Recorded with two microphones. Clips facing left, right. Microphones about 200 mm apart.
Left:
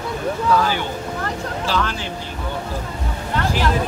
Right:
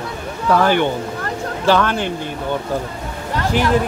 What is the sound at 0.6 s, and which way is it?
Speech, 60° right (ahead or behind).